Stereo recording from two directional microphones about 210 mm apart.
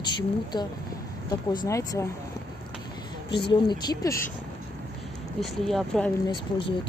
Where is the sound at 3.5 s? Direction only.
20° left (ahead or behind).